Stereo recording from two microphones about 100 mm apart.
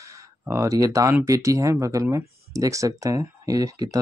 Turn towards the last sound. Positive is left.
turn(degrees=-35)  # may be behind; listen again after turning